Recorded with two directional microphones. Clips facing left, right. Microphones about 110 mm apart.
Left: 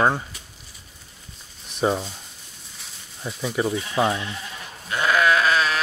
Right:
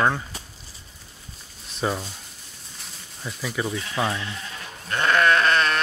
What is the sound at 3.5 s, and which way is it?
Speech, 25° left (ahead or behind).